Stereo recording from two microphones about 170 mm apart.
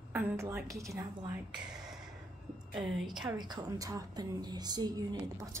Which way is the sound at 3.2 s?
25° right (ahead or behind).